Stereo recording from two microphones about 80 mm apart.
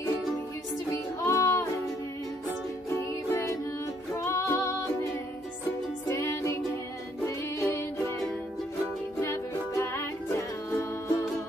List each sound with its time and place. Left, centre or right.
1.2 s music: left
2.9 s music: left
6.0 s music: left
9.2 s music: left